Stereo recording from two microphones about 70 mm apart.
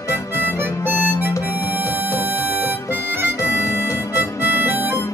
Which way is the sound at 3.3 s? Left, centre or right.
Left.